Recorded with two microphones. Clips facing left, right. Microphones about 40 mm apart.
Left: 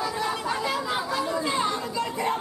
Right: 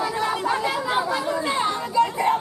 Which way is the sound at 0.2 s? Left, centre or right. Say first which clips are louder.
Right 4 dB; centre.